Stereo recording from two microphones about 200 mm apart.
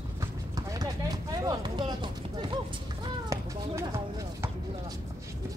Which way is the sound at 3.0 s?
15° right (ahead or behind).